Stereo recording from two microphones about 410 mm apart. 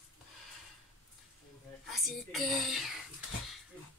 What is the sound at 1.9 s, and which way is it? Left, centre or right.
A woman's voice, centre.